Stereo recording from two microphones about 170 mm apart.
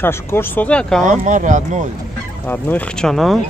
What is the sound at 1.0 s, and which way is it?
Speech, 45° right (ahead or behind).